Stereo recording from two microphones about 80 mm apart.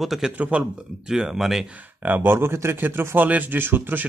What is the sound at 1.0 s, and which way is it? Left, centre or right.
Speech, centre.